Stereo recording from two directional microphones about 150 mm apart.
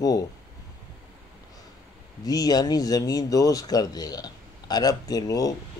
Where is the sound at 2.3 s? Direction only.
25° left (ahead or behind).